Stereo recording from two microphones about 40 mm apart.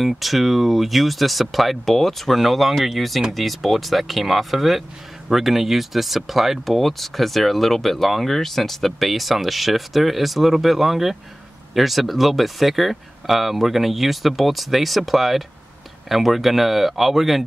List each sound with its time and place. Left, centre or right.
0.0 s speech: centre